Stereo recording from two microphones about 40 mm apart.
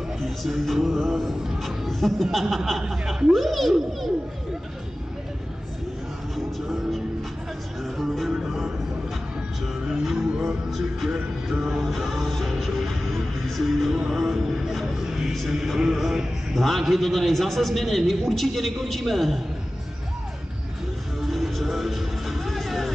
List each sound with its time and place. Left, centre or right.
0.2 s music: centre
0.8 s a man's voice: centre
6.3 s a sound: centre
7.8 s music: centre
8.5 s music: centre
9.8 s music: centre
10.7 s a man's voice: centre
11.8 s music: centre
14.1 s a sound: centre
15.0 s chant: centre
15.4 s a man's voice: centre
21.3 s music: centre